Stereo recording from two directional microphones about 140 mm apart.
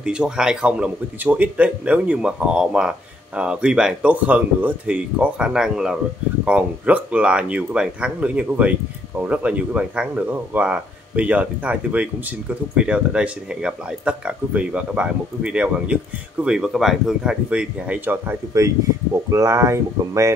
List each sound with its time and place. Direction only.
0.0 s speech: 5° right (ahead or behind)